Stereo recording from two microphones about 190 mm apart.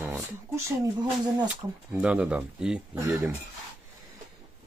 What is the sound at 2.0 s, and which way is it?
Speech, 5° right (ahead or behind).